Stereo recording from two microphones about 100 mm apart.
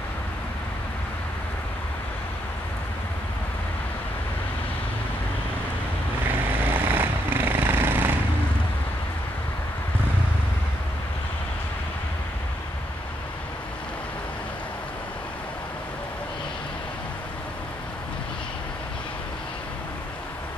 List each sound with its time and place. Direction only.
6.6 s vehicle: 20° right (ahead or behind)